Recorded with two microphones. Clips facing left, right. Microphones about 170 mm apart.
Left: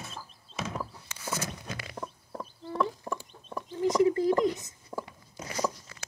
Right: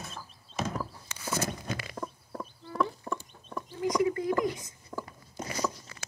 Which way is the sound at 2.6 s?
25° left (ahead or behind).